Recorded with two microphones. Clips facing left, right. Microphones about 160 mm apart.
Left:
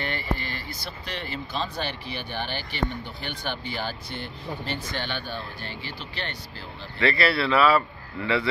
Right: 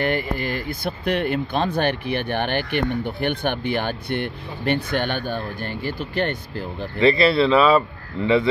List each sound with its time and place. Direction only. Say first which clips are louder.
0.0 s speech: right 8 dB; 50° right (ahead or behind)
7.0 s speech: right 7 dB; 20° right (ahead or behind)